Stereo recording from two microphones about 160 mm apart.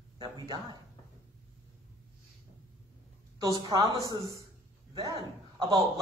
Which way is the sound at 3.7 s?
25° right (ahead or behind).